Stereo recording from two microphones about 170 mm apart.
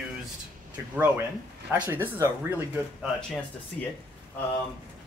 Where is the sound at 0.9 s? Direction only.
10° right (ahead or behind).